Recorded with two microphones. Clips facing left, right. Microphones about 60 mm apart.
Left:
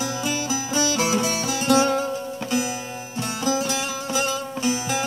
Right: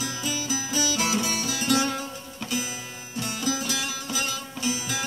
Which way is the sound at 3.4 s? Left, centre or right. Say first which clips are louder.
Left 6 dB; left.